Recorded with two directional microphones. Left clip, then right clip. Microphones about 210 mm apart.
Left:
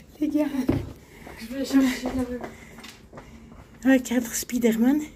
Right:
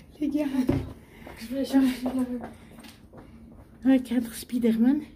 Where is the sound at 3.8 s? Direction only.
Centre (ahead or behind).